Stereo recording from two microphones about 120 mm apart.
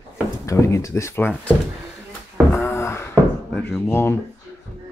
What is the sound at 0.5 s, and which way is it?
Speech, 25° left (ahead or behind).